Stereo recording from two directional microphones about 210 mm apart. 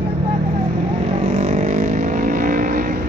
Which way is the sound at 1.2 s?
30° right (ahead or behind).